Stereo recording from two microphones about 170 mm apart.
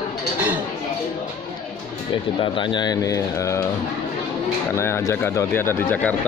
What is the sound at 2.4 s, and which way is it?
Speech, 30° left (ahead or behind).